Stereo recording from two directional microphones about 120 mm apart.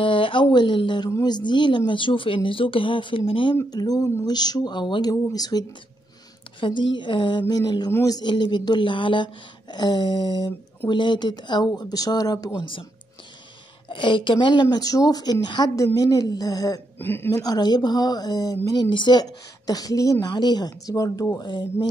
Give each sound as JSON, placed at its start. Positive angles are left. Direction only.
{"t": 0.0, "sound": "a sound", "side_deg": 45}
{"t": 1.2, "sound": "speech", "side_deg": 35}
{"t": 3.7, "sound": "speech", "side_deg": 30}
{"t": 13.8, "sound": "speech", "side_deg": 40}
{"t": 17.0, "sound": "speech", "side_deg": 20}
{"t": 17.4, "sound": "speech", "side_deg": 35}